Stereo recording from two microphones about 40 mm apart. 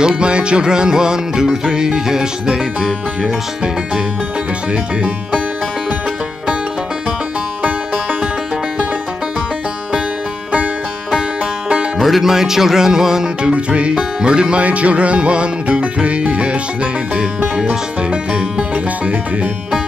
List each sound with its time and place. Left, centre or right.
0.0 s music: right
7.6 s music: right
12.0 s speech: centre
13.4 s music: right